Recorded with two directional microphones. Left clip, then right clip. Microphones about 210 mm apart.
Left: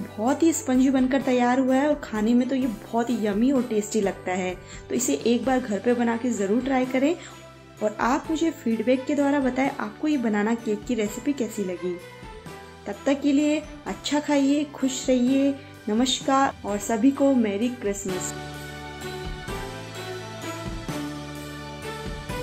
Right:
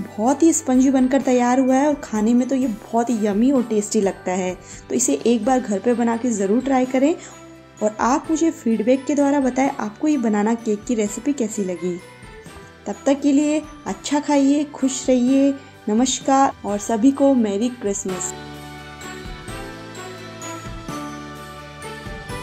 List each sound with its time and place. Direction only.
0.2 s a woman's voice: 30° right (ahead or behind)
12.8 s a woman's voice: 30° right (ahead or behind)